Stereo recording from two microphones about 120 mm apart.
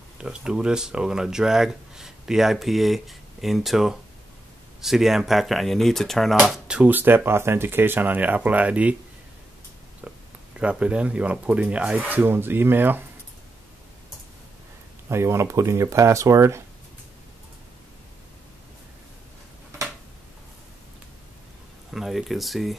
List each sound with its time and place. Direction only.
0.2 s speech: 5° right (ahead or behind)
6.7 s speech: 15° right (ahead or behind)
10.0 s a sound: 10° right (ahead or behind)
10.6 s speech: 10° right (ahead or behind)
15.0 s speech: 20° right (ahead or behind)
21.9 s speech: centre (ahead or behind)